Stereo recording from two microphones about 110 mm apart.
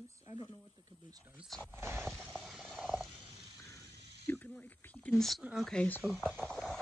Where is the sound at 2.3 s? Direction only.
5° right (ahead or behind).